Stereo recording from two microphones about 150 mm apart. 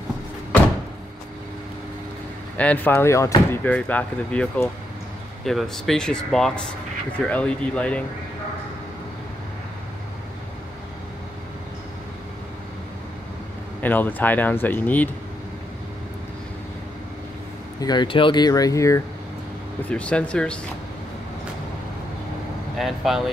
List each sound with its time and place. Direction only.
2.5 s speech: 10° left (ahead or behind)
3.7 s speech: 10° left (ahead or behind)
13.7 s speech: 10° left (ahead or behind)
17.7 s speech: 30° left (ahead or behind)
19.9 s speech: 5° left (ahead or behind)
22.8 s speech: centre (ahead or behind)